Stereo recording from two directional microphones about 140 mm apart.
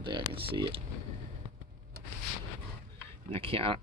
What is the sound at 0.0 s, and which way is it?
Speech, 35° right (ahead or behind).